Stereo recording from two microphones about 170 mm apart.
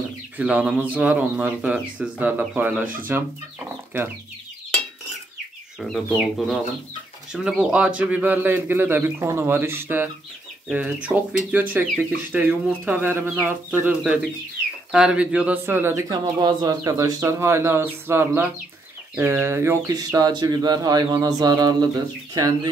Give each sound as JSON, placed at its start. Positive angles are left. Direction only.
{"t": 0.4, "sound": "speech", "side_deg": -10}
{"t": 5.8, "sound": "speech", "side_deg": 0}